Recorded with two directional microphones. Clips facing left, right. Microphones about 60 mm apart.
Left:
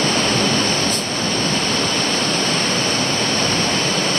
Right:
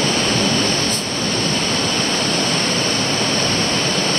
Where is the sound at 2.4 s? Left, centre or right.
Centre.